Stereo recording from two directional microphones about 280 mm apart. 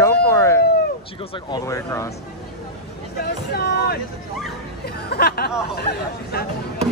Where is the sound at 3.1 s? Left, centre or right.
Left.